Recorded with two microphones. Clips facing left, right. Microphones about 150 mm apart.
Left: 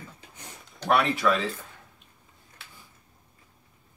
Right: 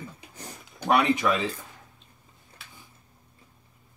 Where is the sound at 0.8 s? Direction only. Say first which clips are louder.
Right 2 dB; 15° right (ahead or behind).